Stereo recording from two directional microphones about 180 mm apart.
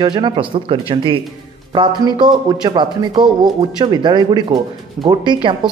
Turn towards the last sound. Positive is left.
turn(degrees=-25)  # may be behind; listen again after turning